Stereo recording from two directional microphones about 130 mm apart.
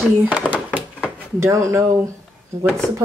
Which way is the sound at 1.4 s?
25° right (ahead or behind).